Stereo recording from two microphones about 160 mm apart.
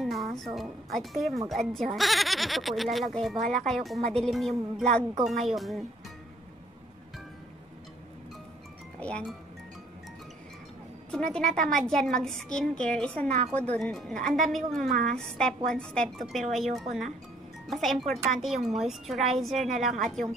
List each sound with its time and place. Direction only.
0.0 s music: centre (ahead or behind)
0.6 s a woman's voice: centre (ahead or behind)
9.0 s speech: 5° left (ahead or behind)
11.1 s a woman's voice: 5° left (ahead or behind)